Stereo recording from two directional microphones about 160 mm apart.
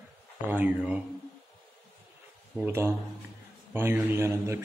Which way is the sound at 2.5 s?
15° right (ahead or behind).